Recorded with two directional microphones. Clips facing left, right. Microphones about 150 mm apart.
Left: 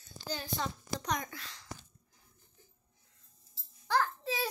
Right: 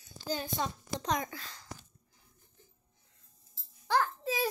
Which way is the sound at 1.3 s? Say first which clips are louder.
Right 2 dB; 40° right (ahead or behind).